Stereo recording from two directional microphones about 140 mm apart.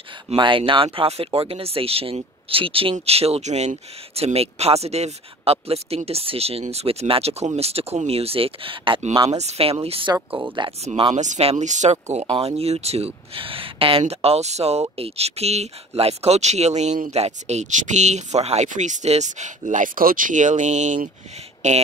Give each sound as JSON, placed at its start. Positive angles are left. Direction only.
{"t": 0.4, "sound": "speech", "side_deg": -35}
{"t": 9.3, "sound": "speech", "side_deg": -50}